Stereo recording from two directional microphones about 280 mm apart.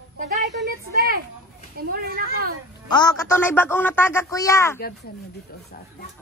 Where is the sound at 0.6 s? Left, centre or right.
Right.